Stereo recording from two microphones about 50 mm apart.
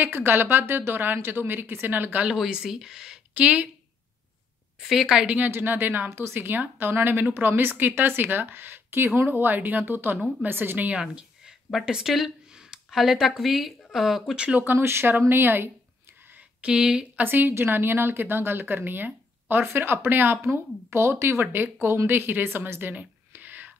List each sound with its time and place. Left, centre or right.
0.0 s speech: right
2.3 s speech: centre
3.3 s a woman's voice: right
4.7 s speech: centre
5.5 s a woman's voice: right
6.0 s speech: right
6.3 s a woman's voice: right
10.9 s speech: right
14.3 s a woman's voice: right
14.8 s speech: right
16.6 s a woman's voice: centre
17.2 s a woman's voice: right